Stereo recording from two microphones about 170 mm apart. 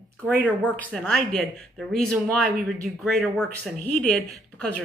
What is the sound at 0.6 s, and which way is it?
Speech, 10° left (ahead or behind).